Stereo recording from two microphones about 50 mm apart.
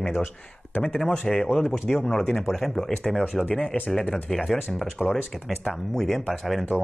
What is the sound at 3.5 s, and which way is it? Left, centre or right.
Speech, left.